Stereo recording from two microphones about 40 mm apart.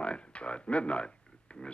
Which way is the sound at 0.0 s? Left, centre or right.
Left.